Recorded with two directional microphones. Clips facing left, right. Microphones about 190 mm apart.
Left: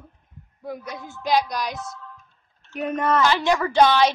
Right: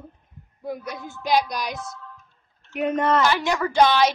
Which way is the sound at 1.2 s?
10° right (ahead or behind).